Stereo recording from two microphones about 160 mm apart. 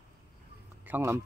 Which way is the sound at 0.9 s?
15° right (ahead or behind).